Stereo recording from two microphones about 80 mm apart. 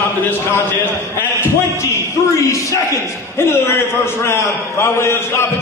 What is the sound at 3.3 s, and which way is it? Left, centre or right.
A man's voice, left.